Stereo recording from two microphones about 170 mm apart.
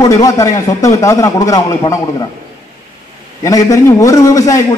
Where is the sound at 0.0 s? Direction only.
20° left (ahead or behind).